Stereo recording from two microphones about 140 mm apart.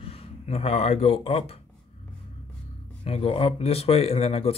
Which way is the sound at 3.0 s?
45° left (ahead or behind).